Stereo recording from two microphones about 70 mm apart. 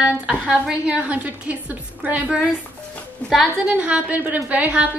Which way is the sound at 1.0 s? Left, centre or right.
Right.